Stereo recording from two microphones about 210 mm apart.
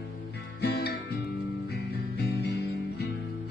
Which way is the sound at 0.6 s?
50° left (ahead or behind).